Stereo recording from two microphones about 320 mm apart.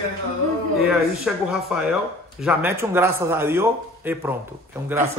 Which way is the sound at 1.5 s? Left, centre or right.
Centre.